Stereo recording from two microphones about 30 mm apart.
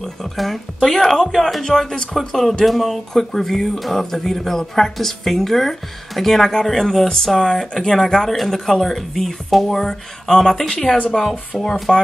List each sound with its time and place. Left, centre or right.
0.4 s speech: centre
9.8 s speech: centre
10.7 s a woman's voice: left
11.5 s speech: centre